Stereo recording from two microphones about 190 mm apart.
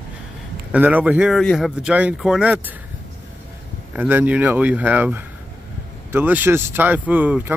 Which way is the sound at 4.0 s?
10° right (ahead or behind).